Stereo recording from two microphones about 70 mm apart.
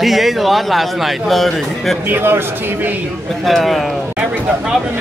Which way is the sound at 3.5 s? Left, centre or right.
Centre.